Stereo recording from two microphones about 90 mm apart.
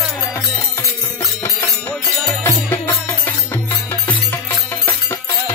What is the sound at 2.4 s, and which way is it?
Music, 25° left (ahead or behind).